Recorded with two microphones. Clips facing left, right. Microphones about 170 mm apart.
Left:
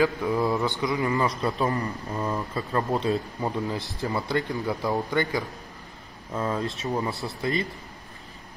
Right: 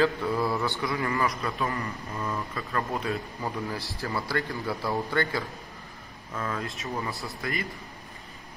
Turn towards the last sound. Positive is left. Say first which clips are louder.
# left 5 dB
turn(degrees=25)  # may be behind; listen again after turning